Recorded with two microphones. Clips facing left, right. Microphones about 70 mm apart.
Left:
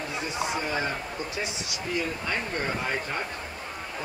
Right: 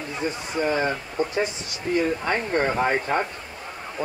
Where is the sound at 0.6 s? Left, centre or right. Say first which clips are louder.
Right 6 dB; right.